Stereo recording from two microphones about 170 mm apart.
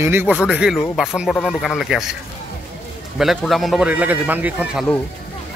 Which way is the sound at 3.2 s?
Centre (ahead or behind).